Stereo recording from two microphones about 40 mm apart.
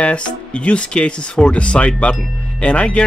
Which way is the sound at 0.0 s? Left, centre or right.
Left.